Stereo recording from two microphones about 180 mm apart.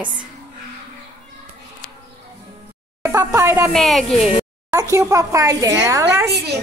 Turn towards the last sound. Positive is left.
turn(degrees=-65)  # may be behind; listen again after turning